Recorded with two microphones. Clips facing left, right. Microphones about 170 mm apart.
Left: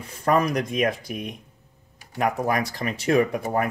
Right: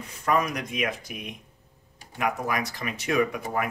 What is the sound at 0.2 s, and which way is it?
Speech, 35° left (ahead or behind).